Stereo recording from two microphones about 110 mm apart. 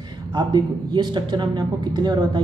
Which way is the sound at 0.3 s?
40° right (ahead or behind).